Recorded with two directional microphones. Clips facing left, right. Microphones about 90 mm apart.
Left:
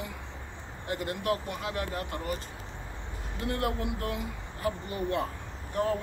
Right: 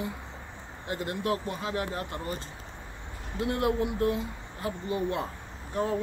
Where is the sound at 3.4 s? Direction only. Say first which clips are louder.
Right 4 dB; 20° right (ahead or behind).